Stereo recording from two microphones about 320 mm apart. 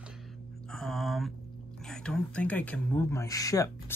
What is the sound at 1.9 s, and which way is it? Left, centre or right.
Speech, centre.